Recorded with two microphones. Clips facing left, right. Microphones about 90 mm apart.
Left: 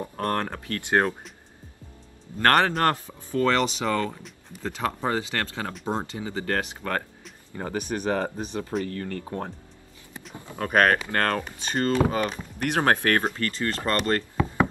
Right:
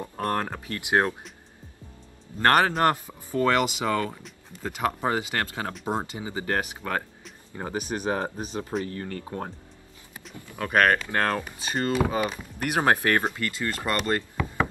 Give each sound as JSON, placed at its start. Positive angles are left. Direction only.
{"t": 0.2, "sound": "speech", "side_deg": -10}
{"t": 2.3, "sound": "speech", "side_deg": -15}
{"t": 10.3, "sound": "speech", "side_deg": 25}
{"t": 10.7, "sound": "speech", "side_deg": 5}
{"t": 11.1, "sound": "speech", "side_deg": -5}
{"t": 14.3, "sound": "a sound", "side_deg": 20}